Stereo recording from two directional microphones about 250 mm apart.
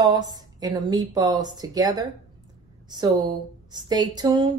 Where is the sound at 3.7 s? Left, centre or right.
Centre.